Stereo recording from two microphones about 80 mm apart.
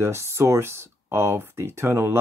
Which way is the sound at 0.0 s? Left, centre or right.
Right.